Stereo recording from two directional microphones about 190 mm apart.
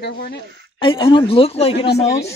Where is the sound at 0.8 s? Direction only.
25° left (ahead or behind).